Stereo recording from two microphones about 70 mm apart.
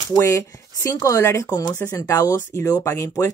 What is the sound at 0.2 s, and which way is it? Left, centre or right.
Speech, left.